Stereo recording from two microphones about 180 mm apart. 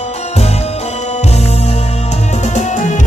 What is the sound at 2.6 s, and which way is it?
Music, 45° left (ahead or behind).